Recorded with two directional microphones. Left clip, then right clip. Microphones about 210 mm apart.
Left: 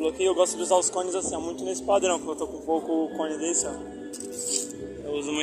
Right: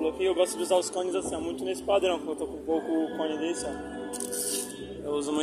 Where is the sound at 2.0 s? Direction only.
5° left (ahead or behind).